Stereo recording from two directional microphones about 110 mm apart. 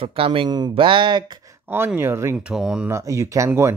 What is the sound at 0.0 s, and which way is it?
Speech, 55° right (ahead or behind).